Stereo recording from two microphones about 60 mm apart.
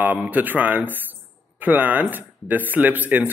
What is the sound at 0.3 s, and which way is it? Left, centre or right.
A man's voice, right.